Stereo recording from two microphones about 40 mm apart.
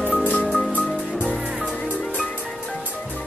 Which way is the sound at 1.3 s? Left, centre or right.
Right.